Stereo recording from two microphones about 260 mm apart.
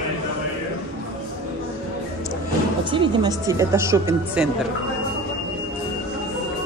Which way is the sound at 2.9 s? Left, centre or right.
Centre.